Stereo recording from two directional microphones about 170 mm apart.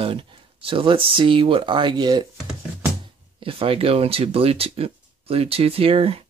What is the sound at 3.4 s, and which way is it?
Speech, 35° right (ahead or behind).